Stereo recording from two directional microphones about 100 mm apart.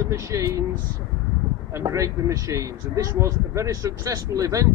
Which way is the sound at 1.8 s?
35° right (ahead or behind).